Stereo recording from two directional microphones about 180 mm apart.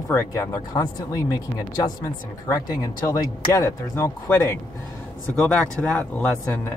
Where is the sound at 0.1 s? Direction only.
15° left (ahead or behind).